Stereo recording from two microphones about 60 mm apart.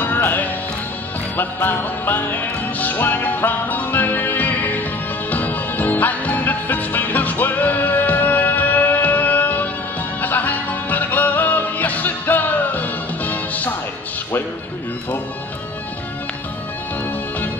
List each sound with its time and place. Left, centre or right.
0.0 s music: left